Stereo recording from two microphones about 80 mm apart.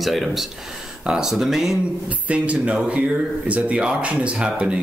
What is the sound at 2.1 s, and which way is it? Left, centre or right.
Speech, centre.